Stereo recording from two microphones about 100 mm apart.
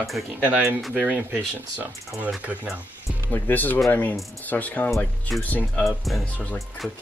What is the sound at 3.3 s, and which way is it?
Speech, 20° left (ahead or behind).